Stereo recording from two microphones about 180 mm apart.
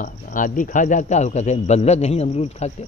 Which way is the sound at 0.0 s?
45° left (ahead or behind).